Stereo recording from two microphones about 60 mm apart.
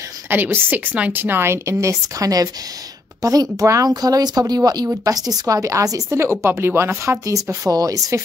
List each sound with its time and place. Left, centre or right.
0.3 s a woman's voice: right
3.2 s a woman's voice: right
6.0 s a woman's voice: right
7.1 s speech: right
7.6 s a woman's voice: right